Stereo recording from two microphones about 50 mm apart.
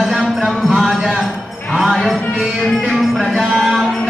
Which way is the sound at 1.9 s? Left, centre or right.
Centre.